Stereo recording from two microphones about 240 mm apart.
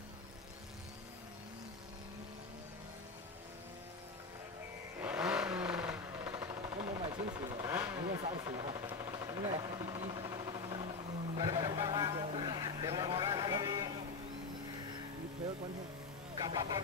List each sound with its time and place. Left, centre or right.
5.0 s vehicle: centre
8.5 s a sound: centre
11.3 s vehicle: centre
16.3 s vehicle: centre